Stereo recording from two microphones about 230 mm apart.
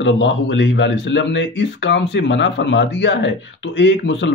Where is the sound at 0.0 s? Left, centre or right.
Left.